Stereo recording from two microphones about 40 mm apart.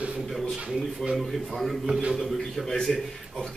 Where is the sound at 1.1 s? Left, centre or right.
Centre.